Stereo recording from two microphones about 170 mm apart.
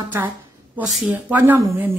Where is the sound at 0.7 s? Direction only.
5° right (ahead or behind).